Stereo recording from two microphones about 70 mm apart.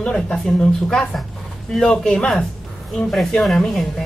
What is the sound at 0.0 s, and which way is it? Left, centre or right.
Speech, centre.